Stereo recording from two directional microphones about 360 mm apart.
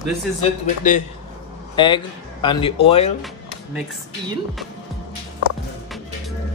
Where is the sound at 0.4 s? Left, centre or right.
Left.